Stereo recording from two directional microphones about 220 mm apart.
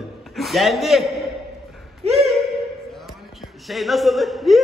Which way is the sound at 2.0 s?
30° right (ahead or behind).